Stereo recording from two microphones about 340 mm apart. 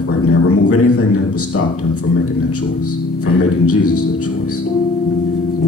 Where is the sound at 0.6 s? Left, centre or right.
Left.